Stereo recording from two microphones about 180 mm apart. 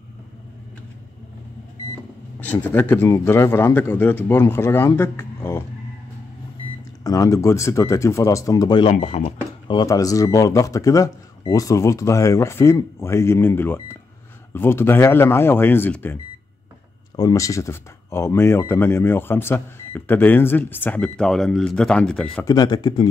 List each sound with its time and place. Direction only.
2.4 s speech: 10° left (ahead or behind)
7.0 s speech: 20° left (ahead or behind)
8.9 s speech: 35° left (ahead or behind); by 16.2 s 10° left (ahead or behind)
17.2 s speech: 20° left (ahead or behind)
22.4 s speech: 20° left (ahead or behind)